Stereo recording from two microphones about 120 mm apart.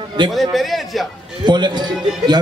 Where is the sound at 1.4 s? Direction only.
40° right (ahead or behind).